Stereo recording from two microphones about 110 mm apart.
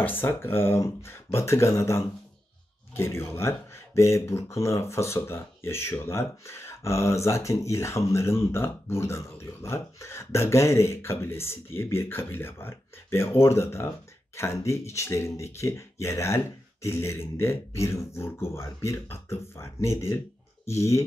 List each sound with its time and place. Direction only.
0.0 s speech: 20° left (ahead or behind)